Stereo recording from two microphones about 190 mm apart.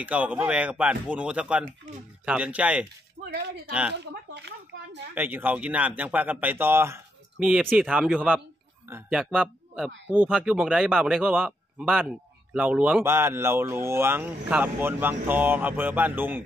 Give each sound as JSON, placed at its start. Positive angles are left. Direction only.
{"t": 0.0, "sound": "speech", "side_deg": -10}
{"t": 3.3, "sound": "speech", "side_deg": -65}
{"t": 5.1, "sound": "speech", "side_deg": -10}